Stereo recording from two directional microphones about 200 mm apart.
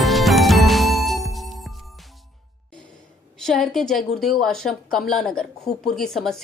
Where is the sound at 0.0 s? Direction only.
Centre (ahead or behind).